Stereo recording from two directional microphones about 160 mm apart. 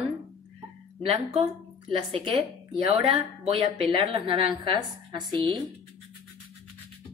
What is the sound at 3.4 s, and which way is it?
A woman's voice, 35° right (ahead or behind).